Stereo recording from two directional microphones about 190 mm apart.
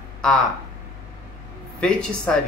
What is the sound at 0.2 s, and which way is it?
Speech, 5° left (ahead or behind).